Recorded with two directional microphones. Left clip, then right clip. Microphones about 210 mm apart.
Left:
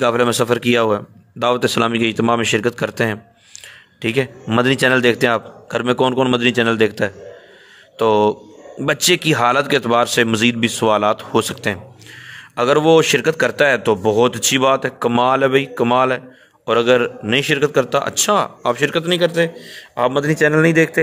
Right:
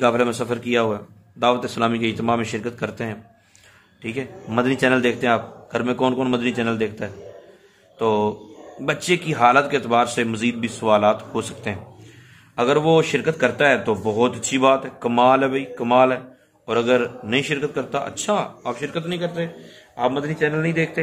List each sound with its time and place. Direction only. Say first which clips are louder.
0.0 s a man's voice: left 4 dB; 40° left (ahead or behind)